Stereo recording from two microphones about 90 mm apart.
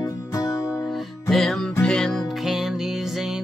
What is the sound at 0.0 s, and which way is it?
Music, 40° left (ahead or behind).